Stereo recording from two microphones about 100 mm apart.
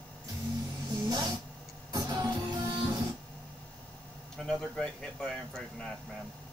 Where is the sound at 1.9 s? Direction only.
45° right (ahead or behind).